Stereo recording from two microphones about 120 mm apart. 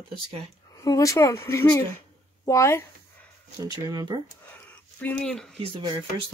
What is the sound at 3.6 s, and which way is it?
Speech, 35° right (ahead or behind).